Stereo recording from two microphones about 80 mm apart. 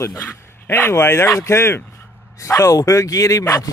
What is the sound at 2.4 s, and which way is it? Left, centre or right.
Speech, left.